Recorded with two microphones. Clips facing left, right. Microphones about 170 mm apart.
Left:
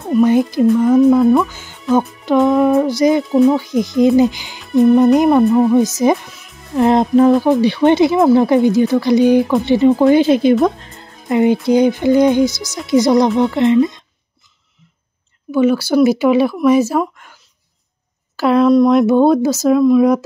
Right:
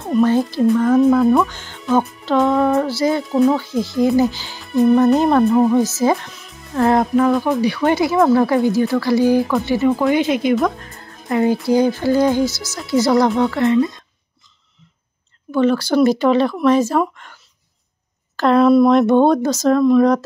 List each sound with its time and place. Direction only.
0.2 s speech: 15° left (ahead or behind)
0.7 s speech: 5° left (ahead or behind)
5.5 s speech: centre (ahead or behind)
6.0 s music: 15° left (ahead or behind)
6.8 s speech: 20° left (ahead or behind)
7.3 s speech: centre (ahead or behind)
7.6 s speech: 25° left (ahead or behind)
10.6 s music: 25° left (ahead or behind)
11.6 s speech: 20° left (ahead or behind)
15.5 s speech: 10° left (ahead or behind)